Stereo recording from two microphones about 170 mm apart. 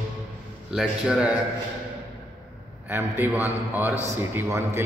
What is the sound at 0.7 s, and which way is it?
Speech, 5° right (ahead or behind).